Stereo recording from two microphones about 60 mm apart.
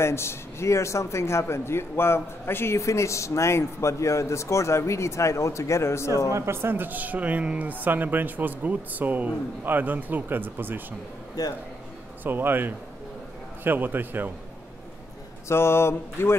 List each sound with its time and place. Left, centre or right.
0.0 s speech: left
6.3 s a man's voice: right
11.4 s a man's voice: left
12.2 s a man's voice: right
15.4 s speech: left